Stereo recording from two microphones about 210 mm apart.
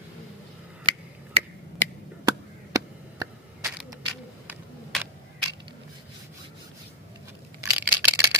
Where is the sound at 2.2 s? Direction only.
15° right (ahead or behind).